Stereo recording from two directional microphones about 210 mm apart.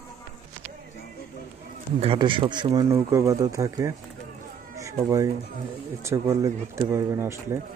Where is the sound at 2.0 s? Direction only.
25° right (ahead or behind).